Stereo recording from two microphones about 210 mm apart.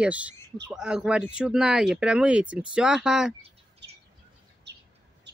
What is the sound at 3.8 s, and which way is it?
Bird, 55° right (ahead or behind).